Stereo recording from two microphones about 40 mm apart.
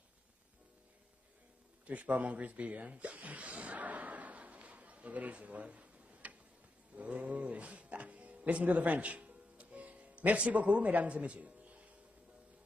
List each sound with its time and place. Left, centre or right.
1.9 s speech: right
7.0 s music: right